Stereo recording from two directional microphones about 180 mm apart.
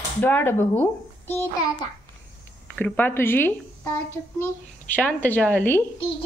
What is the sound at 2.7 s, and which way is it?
A child's voice, 10° left (ahead or behind).